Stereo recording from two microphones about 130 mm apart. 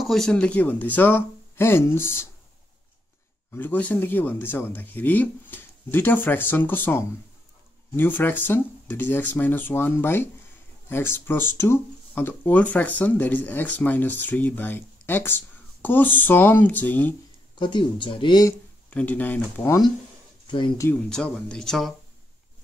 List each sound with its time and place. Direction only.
0.0 s speech: centre (ahead or behind); by 2.2 s 20° left (ahead or behind)
3.5 s speech: 15° left (ahead or behind)
17.6 s speech: 40° left (ahead or behind)
18.9 s speech: 10° left (ahead or behind)
20.4 s speech: 35° left (ahead or behind)
20.9 s speech: 5° left (ahead or behind)